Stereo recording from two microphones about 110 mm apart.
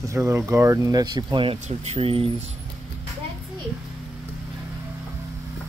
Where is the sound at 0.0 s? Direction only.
25° right (ahead or behind); by 2.3 s 55° right (ahead or behind).